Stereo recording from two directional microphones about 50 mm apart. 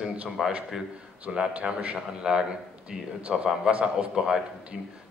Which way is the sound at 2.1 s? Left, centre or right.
Centre.